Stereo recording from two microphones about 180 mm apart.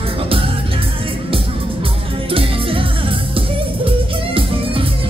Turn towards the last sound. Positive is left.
turn(degrees=-30)  # may be behind; listen again after turning